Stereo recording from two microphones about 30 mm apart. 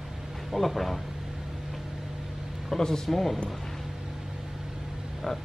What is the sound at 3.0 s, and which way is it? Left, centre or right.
Speech, centre.